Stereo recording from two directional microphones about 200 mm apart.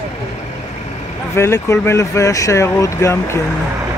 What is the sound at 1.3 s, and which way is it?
Speech, 15° left (ahead or behind).